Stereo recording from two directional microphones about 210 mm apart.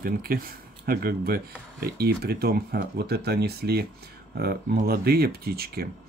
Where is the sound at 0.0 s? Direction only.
45° right (ahead or behind).